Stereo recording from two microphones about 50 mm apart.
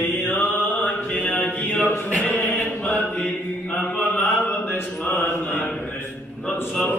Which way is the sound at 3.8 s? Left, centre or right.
Left.